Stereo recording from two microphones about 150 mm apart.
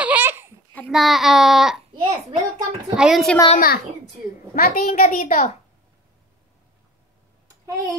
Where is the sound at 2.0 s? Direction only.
30° right (ahead or behind).